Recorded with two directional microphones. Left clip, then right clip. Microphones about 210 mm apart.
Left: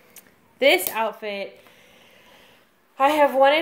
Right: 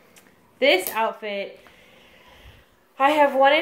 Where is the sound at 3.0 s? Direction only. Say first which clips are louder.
Even; 35° left (ahead or behind).